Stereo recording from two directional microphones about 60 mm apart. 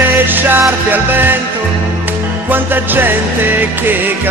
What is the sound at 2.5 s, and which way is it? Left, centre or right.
Music, right.